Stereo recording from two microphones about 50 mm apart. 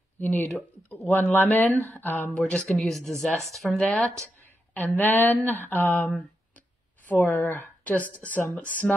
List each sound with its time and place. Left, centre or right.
0.2 s a woman's voice: left
2.3 s speech: centre
2.8 s speech: centre
4.4 s speech: left
7.2 s a woman's voice: left